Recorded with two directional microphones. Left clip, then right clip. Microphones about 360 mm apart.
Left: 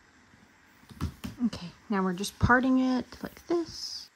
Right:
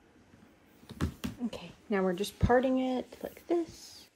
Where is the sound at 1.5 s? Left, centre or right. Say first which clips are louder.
Even; centre.